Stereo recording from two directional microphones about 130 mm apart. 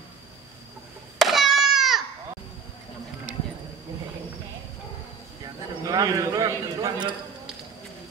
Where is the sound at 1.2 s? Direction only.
Centre (ahead or behind).